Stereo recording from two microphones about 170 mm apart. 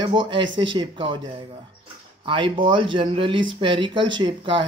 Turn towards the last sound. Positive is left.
turn(degrees=-30)  # may be behind; listen again after turning